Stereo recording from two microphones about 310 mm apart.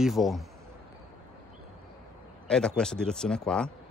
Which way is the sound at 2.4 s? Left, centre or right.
Centre.